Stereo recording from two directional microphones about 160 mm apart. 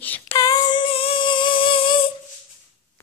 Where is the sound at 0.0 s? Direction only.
10° left (ahead or behind).